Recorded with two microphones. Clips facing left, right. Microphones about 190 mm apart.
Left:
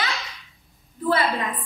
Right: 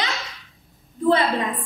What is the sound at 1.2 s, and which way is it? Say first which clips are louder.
Speech: right 2 dB; centre (ahead or behind).